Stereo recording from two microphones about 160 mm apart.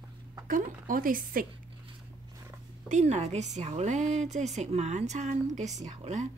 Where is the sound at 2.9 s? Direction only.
45° right (ahead or behind).